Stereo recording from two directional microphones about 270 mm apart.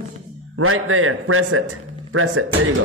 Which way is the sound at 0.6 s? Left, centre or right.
Right.